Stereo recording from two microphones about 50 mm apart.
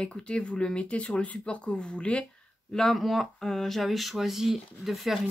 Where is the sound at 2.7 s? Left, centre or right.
Centre.